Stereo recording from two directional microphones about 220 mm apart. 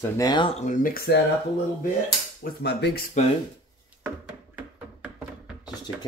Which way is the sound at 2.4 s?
45° left (ahead or behind).